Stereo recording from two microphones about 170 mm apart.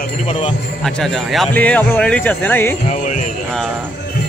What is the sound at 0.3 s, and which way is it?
Speech, 35° left (ahead or behind).